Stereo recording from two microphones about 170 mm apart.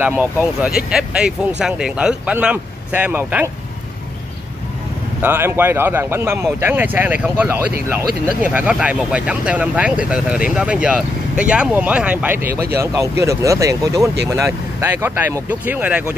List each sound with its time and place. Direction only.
0.0 s speech: 10° right (ahead or behind)
5.2 s speech: 10° right (ahead or behind)